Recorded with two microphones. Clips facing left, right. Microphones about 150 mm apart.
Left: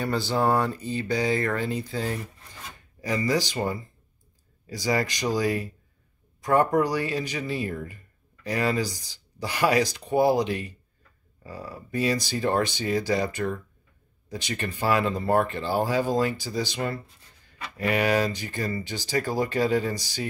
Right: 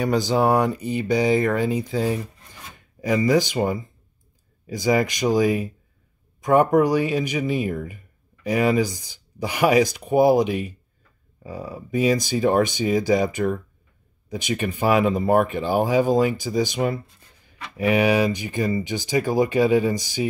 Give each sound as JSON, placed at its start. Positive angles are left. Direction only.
{"t": 0.0, "sound": "speech", "side_deg": -15}